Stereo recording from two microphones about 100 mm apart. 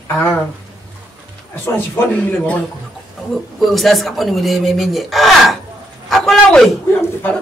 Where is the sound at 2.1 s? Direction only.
10° left (ahead or behind).